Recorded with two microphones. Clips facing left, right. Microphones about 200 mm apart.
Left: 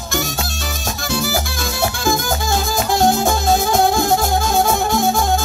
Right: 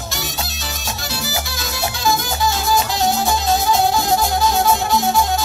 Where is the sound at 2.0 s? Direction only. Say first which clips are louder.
Right 2 dB; 50° left (ahead or behind).